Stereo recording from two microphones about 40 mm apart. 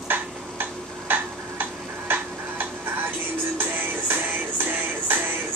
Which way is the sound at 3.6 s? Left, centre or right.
Right.